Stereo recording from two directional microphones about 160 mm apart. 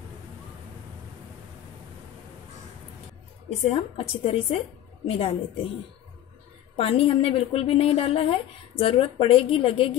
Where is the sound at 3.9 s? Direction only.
35° left (ahead or behind).